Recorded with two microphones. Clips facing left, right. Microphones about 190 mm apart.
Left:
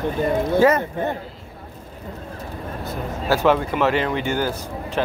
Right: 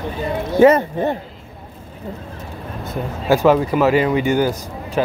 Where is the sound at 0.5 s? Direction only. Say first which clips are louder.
Right 6 dB; 20° right (ahead or behind).